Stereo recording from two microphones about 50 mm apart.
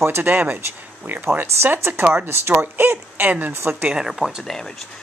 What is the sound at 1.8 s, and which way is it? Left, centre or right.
Speech, right.